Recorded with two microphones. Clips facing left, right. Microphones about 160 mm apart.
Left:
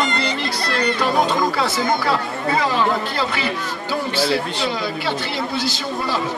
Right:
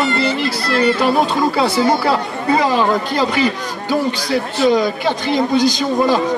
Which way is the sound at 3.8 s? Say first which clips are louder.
Right 3 dB; 15° right (ahead or behind).